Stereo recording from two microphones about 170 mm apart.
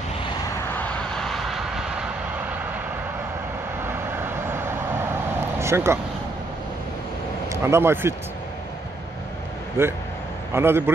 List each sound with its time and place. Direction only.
0.7 s vehicle: 5° left (ahead or behind)
3.8 s vehicle: 15° right (ahead or behind)
5.6 s speech: 15° right (ahead or behind)
7.5 s speech: 15° right (ahead or behind)
9.8 s speech: 15° right (ahead or behind)